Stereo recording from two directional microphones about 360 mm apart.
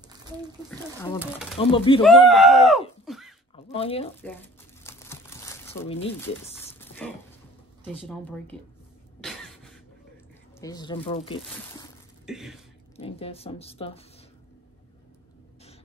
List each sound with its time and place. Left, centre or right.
0.7 s speech: centre
1.6 s speech: centre
2.0 s speech: centre
3.1 s a sound: centre
3.5 s speech: centre
4.8 s crumpling: centre
7.8 s speech: centre
10.6 s speech: centre
12.3 s speech: centre
12.9 s speech: centre